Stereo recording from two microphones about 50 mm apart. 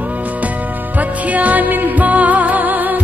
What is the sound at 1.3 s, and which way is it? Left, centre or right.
Music, right.